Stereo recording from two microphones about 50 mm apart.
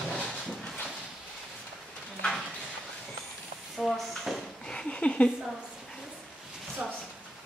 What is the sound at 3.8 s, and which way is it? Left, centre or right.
Speech, centre.